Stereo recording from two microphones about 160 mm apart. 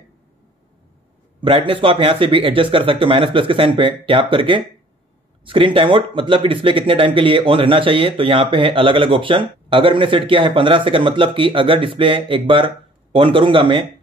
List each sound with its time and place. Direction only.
1.4 s speech: 35° right (ahead or behind)